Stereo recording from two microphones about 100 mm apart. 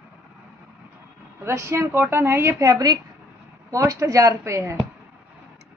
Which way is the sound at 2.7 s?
40° right (ahead or behind).